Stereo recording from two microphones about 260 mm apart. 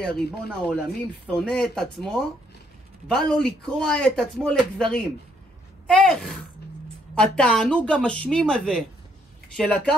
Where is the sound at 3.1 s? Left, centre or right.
Centre.